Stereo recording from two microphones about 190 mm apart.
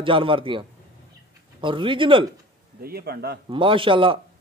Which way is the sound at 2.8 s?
55° right (ahead or behind).